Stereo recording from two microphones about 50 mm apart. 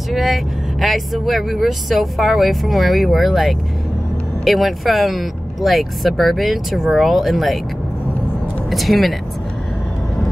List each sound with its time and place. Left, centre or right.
0.1 s speech: centre
8.6 s speech: centre